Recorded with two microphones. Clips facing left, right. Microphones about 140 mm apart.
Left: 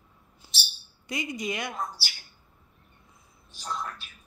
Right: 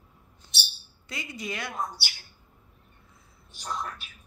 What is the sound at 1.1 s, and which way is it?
Speech, 15° left (ahead or behind).